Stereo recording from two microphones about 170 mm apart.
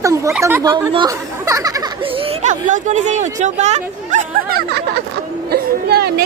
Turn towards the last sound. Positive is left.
turn(degrees=-70)  # may be behind; listen again after turning